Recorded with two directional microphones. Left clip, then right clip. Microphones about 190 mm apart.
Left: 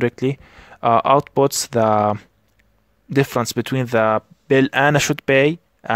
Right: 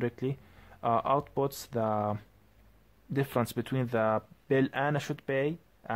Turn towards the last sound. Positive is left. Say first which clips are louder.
# left 15 dB
turn(degrees=45)  # may be behind; listen again after turning